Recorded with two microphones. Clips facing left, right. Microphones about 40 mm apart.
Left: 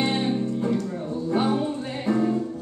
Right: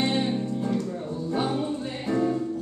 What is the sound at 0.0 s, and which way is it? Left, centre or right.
Music, centre.